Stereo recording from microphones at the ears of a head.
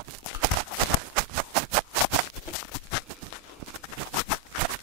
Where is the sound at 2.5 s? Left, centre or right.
Left.